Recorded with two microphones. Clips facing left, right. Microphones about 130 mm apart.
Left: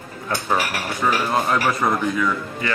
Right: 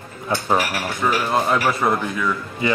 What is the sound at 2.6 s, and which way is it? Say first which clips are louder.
Speech: right 5 dB; 15° right (ahead or behind).